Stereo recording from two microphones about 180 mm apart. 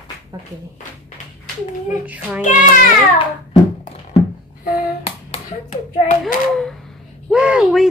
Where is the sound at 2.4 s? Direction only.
50° left (ahead or behind).